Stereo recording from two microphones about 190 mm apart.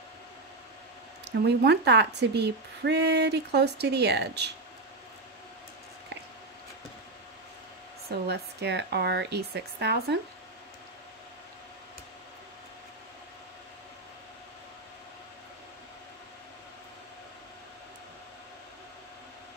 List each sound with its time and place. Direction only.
1.4 s speech: 60° right (ahead or behind)
8.1 s speech: 60° right (ahead or behind)